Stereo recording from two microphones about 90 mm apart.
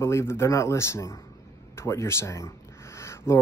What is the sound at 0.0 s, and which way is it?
Speech, 30° left (ahead or behind).